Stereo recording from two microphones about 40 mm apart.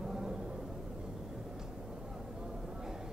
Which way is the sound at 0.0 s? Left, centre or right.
Centre.